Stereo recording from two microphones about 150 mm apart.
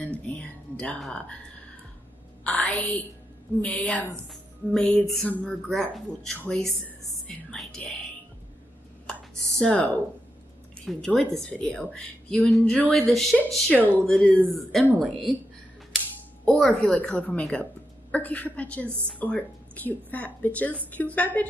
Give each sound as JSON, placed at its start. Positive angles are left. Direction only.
{"t": 0.0, "sound": "music", "side_deg": 10}
{"t": 2.4, "sound": "a woman's voice", "side_deg": 5}
{"t": 9.0, "sound": "a woman's voice", "side_deg": 5}
{"t": 13.7, "sound": "a woman's voice", "side_deg": 15}
{"t": 16.4, "sound": "a woman's voice", "side_deg": 5}